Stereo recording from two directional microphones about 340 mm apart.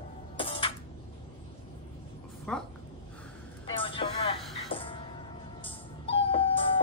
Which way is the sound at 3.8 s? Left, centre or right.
Centre.